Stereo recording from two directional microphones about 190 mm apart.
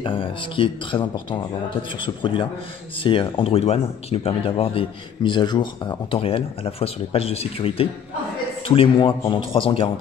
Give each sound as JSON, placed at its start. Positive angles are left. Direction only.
{"t": 0.0, "sound": "speech", "side_deg": 25}